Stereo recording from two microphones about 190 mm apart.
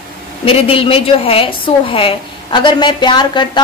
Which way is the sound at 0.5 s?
30° left (ahead or behind).